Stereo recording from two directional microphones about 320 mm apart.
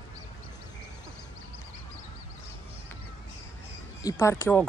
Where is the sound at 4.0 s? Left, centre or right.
Centre.